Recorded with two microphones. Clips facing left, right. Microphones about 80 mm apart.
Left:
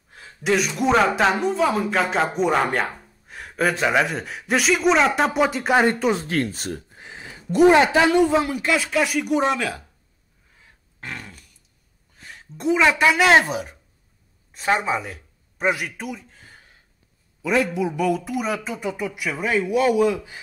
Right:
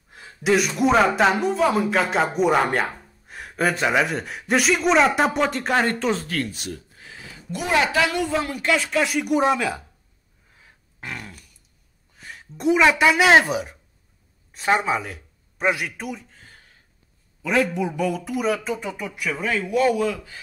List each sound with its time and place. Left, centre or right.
0.1 s speech: centre
6.2 s speech: left
8.5 s speech: centre
10.6 s grunt: centre
12.3 s a woman's voice: centre
17.6 s speech: centre